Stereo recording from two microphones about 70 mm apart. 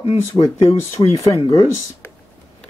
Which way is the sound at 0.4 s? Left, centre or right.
Left.